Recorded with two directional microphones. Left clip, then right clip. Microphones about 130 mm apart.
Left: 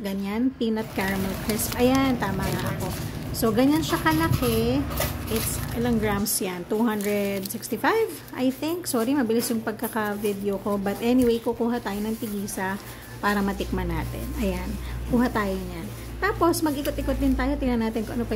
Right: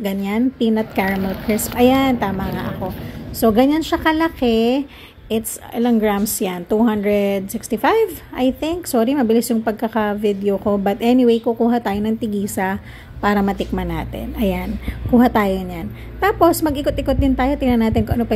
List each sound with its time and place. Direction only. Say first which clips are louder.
0.0 s a woman's voice: right 7 dB; 25° right (ahead or behind)